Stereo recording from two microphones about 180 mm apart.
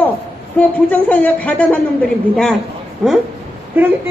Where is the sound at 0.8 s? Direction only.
10° left (ahead or behind).